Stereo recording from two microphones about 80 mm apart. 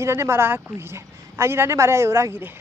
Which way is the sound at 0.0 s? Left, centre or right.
Right.